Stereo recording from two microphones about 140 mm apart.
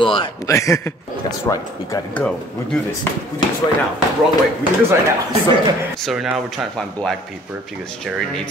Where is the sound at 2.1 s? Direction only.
10° left (ahead or behind).